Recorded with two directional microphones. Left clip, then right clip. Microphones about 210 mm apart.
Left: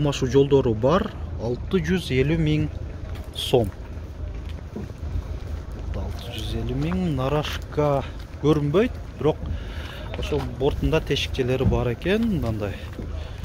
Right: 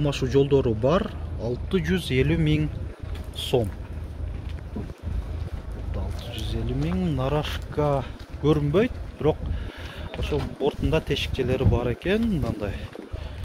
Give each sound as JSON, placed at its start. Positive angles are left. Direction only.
{"t": 0.0, "sound": "speech", "side_deg": 5}
{"t": 3.3, "sound": "speech", "side_deg": 20}
{"t": 6.2, "sound": "speech", "side_deg": -5}